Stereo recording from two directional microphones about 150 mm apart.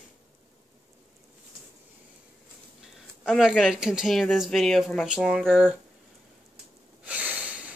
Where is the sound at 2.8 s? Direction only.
5° right (ahead or behind).